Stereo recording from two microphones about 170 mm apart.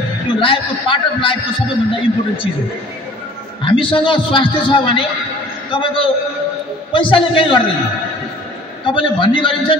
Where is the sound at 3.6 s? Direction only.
30° left (ahead or behind).